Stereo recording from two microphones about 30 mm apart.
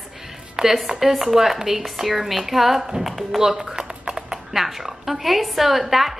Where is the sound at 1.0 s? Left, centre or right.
Centre.